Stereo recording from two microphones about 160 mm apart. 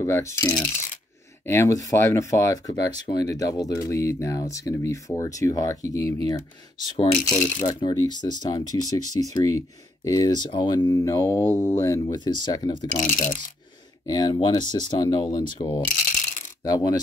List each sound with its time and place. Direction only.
0.0 s coin: 15° left (ahead or behind)
1.4 s speech: 15° left (ahead or behind)
7.3 s speech: 50° left (ahead or behind)
7.8 s speech: 25° left (ahead or behind)
12.9 s speech: 50° left (ahead or behind)
14.0 s speech: 25° left (ahead or behind)
15.9 s coin: 50° left (ahead or behind)
16.6 s speech: 25° left (ahead or behind)